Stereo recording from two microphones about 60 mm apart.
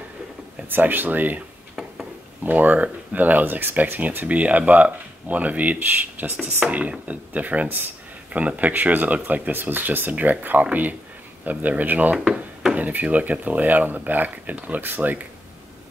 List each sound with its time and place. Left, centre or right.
0.7 s speech: right
2.4 s speech: right